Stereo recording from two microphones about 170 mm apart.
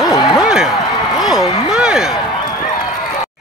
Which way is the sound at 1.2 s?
Centre (ahead or behind).